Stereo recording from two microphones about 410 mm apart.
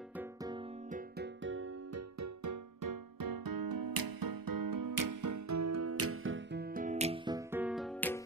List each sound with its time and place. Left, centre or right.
0.1 s music: centre